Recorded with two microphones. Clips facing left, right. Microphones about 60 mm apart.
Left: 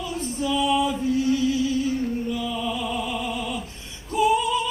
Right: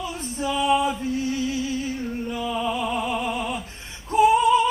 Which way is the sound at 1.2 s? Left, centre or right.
Left.